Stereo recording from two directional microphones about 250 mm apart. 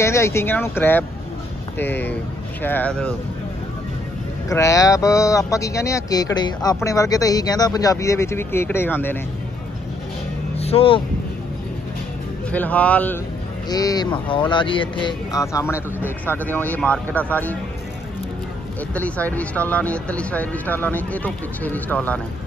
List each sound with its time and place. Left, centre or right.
0.0 s speech: centre
4.5 s speech: centre
10.5 s music: left
12.4 s speech: centre
18.9 s speech: centre